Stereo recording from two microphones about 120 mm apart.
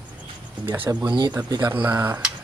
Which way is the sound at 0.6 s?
15° right (ahead or behind).